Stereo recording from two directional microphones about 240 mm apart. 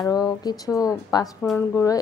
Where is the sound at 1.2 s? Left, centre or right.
Centre.